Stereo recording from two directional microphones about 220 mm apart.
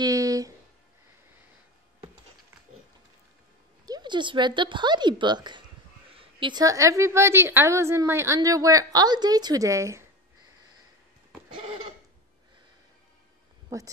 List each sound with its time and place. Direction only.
0.0 s a sound: 15° right (ahead or behind)
3.8 s a woman's voice: 20° right (ahead or behind)
11.5 s speech: 25° right (ahead or behind)
13.7 s speech: 15° right (ahead or behind)